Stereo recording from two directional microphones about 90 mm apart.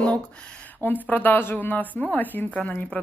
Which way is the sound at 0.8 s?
20° left (ahead or behind).